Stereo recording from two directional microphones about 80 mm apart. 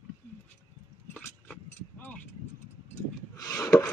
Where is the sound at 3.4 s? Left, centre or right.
Left.